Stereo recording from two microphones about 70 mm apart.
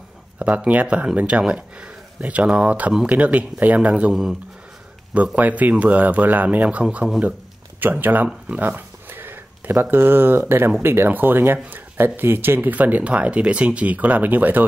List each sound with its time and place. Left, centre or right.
0.7 s speech: right
4.1 s speech: centre
5.1 s speech: centre